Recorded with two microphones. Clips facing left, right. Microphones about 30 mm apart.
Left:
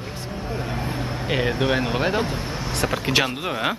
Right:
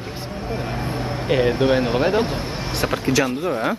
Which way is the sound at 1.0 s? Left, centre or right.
Right.